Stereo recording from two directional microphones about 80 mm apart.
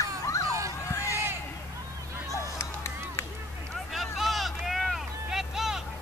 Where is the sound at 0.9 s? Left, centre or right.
Left.